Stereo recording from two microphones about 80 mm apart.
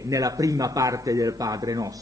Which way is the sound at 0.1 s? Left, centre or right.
Right.